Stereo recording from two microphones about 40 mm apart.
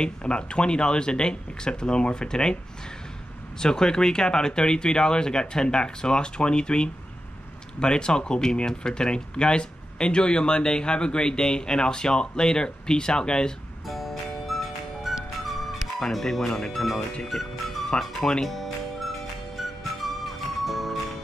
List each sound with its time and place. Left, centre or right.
0.0 s speech: left
3.5 s speech: centre
13.8 s music: centre
16.1 s speech: centre
17.9 s speech: left
18.4 s music: centre